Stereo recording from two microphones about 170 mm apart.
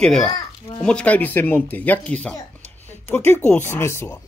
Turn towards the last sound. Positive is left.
turn(degrees=15)  # may be behind; listen again after turning